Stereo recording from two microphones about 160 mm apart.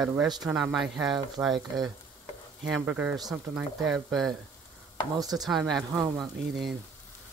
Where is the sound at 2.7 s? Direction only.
10° right (ahead or behind).